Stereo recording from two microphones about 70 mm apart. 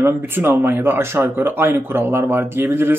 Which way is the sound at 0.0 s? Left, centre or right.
Right.